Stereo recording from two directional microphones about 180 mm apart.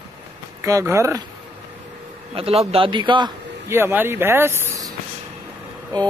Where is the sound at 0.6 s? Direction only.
15° right (ahead or behind).